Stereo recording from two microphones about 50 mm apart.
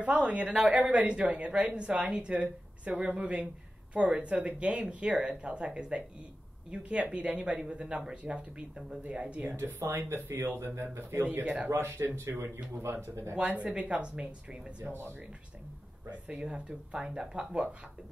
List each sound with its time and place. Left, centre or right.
0.0 s speech: right
9.6 s speech: right
11.4 s a man's voice: right
11.7 s speech: right
12.3 s a man's voice: right
12.7 s speech: right
13.4 s speech: right
14.9 s speech: right
16.3 s speech: right